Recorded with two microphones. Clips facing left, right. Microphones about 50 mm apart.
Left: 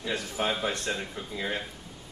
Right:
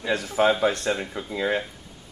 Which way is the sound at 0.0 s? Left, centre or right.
Right.